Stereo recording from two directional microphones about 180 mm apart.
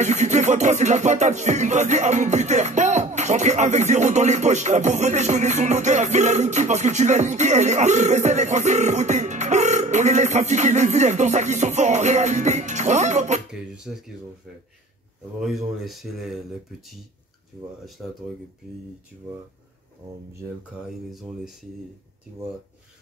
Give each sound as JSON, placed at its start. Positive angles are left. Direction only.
{"t": 0.0, "sound": "music", "side_deg": -40}
{"t": 13.5, "sound": "speech", "side_deg": 0}
{"t": 15.4, "sound": "speech", "side_deg": 0}
{"t": 18.0, "sound": "speech", "side_deg": 0}
{"t": 20.8, "sound": "speech", "side_deg": -5}